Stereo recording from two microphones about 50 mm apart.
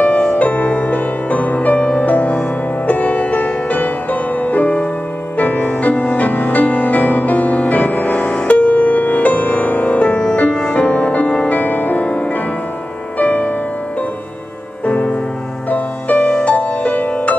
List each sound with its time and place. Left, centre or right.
0.0 s music: left
13.2 s music: left
15.7 s music: left